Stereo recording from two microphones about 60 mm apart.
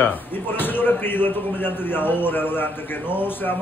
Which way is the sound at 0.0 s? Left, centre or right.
Left.